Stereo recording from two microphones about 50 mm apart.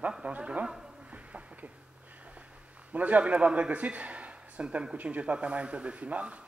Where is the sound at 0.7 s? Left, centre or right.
Centre.